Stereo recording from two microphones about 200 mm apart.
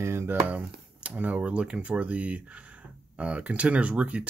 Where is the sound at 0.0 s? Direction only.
10° right (ahead or behind).